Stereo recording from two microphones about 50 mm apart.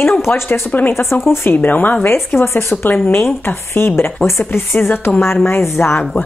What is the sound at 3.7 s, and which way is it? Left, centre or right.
Speech, left.